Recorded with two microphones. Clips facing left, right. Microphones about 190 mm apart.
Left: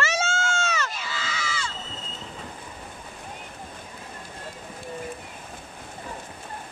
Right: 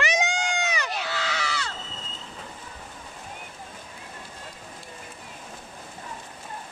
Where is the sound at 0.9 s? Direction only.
65° right (ahead or behind).